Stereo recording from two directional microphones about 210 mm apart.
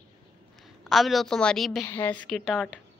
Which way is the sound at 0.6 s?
Centre (ahead or behind).